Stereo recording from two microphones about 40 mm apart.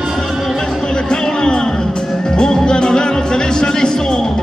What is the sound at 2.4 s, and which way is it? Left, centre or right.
Music, centre.